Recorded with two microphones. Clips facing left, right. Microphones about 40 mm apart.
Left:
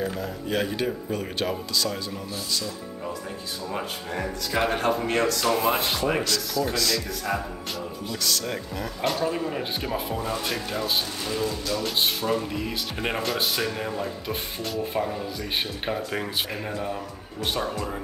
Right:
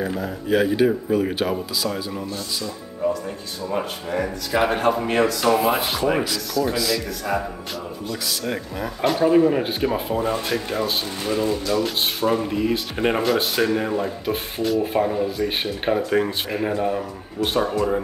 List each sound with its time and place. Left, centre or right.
0.0 s speech: centre
3.7 s speech: centre
11.4 s speech: right
11.8 s speech: centre
13.6 s speech: centre